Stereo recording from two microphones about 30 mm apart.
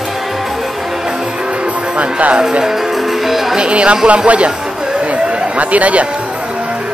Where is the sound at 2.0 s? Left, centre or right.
Right.